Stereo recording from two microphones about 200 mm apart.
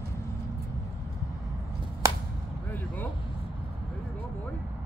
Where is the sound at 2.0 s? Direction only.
15° right (ahead or behind).